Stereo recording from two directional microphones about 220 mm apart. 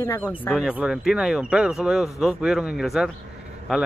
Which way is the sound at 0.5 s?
5° right (ahead or behind).